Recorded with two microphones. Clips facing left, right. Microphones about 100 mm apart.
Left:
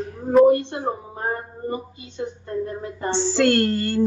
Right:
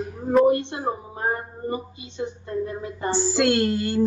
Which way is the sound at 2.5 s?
40° left (ahead or behind).